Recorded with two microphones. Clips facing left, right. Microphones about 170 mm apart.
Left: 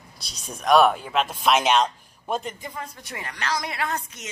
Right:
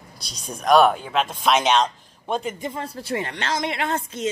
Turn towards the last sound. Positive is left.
turn(degrees=-30)  # may be behind; listen again after turning